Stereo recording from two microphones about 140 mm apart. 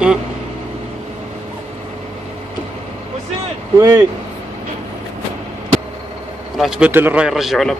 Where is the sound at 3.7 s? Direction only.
25° right (ahead or behind).